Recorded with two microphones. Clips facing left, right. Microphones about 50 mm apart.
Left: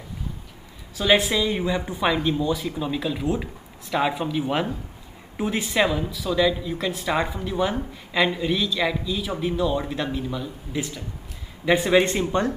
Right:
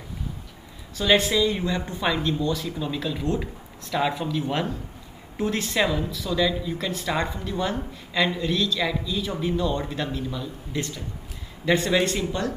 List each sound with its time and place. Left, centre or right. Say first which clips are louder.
0.9 s speech: left 1 dB; centre; by 12.5 s left